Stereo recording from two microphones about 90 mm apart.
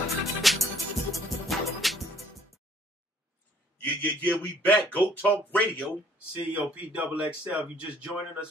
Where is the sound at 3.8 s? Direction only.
15° left (ahead or behind).